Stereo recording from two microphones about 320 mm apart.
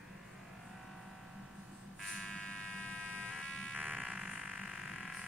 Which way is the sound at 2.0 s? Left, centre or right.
Centre.